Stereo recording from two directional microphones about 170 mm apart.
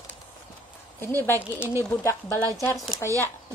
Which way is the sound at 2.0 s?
15° left (ahead or behind).